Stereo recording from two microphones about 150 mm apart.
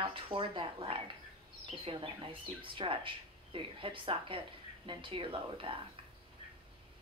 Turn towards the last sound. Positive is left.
turn(degrees=-35)  # may be behind; listen again after turning